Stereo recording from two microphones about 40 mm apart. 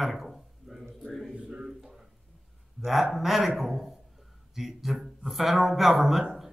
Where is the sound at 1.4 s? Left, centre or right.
Centre.